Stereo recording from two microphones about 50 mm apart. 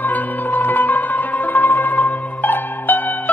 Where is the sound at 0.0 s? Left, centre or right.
Left.